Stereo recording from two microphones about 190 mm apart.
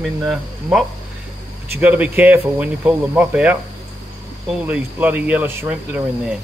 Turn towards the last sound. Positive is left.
turn(degrees=-10)  # may be behind; listen again after turning